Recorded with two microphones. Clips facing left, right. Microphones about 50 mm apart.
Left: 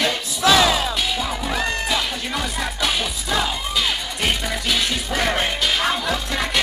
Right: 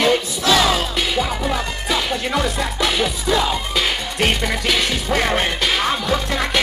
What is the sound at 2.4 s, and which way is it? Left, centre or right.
Music, right.